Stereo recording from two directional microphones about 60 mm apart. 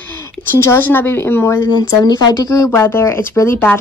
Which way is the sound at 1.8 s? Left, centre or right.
Left.